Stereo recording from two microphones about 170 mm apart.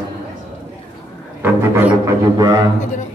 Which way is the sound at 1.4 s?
10° right (ahead or behind).